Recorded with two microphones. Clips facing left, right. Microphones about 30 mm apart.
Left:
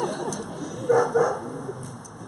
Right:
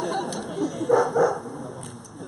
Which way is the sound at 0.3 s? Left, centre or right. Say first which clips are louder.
Even; right.